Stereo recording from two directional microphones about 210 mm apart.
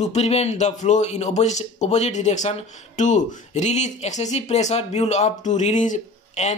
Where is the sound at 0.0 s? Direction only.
30° left (ahead or behind).